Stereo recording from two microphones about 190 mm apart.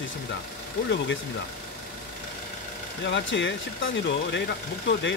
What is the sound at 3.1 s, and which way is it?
Speech, 70° left (ahead or behind).